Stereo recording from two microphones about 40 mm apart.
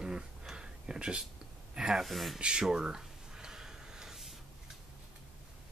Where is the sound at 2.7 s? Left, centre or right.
Centre.